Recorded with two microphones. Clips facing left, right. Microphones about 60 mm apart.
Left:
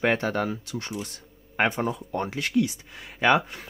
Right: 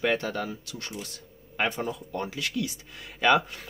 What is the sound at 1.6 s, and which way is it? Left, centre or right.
Speech, left.